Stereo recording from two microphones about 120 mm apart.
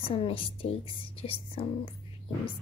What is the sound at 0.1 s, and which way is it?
A woman's voice, 50° left (ahead or behind).